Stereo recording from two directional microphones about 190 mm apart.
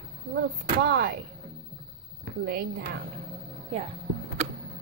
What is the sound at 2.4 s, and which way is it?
Child singing, 55° right (ahead or behind).